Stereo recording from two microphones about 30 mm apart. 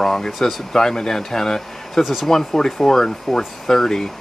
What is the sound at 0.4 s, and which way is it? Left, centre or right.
Speech, centre.